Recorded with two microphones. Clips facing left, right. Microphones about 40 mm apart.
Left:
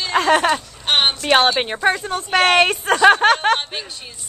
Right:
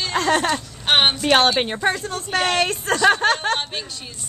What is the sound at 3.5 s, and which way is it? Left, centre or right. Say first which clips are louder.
Speech: left 1 dB; centre.